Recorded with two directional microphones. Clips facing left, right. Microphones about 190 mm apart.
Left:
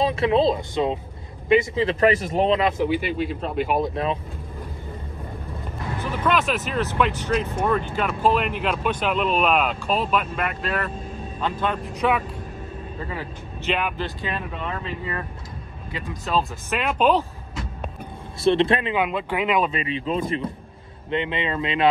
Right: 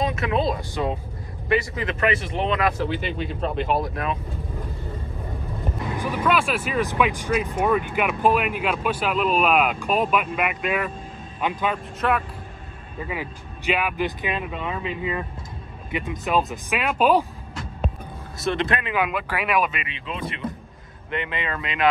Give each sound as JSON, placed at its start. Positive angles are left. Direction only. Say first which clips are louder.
{"t": 0.0, "sound": "speech", "louder": "left 4 dB", "side_deg": 30}
{"t": 2.8, "sound": "speech", "louder": "left 4 dB", "side_deg": 10}
{"t": 3.7, "sound": "speech", "louder": "left 2 dB", "side_deg": 25}
{"t": 5.9, "sound": "speech", "louder": "even", "side_deg": -10}
{"t": 13.0, "sound": "speech", "louder": "right 3 dB", "side_deg": -15}
{"t": 18.4, "sound": "speech", "louder": "left 6 dB", "side_deg": 30}